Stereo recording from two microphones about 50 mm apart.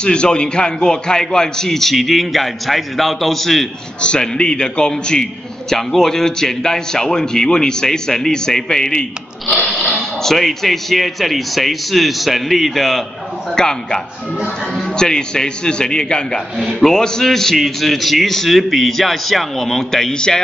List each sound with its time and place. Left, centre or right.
0.0 s a man's voice: centre
4.0 s a man's voice: centre